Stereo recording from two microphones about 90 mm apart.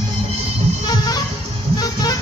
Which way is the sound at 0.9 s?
45° left (ahead or behind).